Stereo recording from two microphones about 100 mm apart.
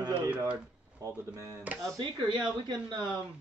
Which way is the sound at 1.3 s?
30° right (ahead or behind).